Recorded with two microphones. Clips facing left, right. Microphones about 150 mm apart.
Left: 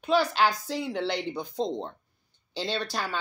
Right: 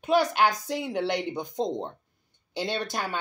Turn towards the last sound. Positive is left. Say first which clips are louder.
# right 1 dB
turn(degrees=-20)  # may be behind; listen again after turning